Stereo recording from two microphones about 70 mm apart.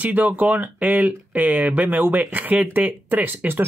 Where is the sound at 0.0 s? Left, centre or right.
Right.